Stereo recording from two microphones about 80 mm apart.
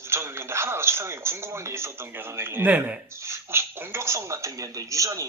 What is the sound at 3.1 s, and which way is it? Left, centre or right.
Speech, right.